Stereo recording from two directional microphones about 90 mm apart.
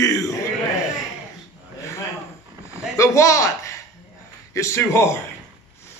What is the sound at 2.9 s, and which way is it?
A man's voice, 35° left (ahead or behind).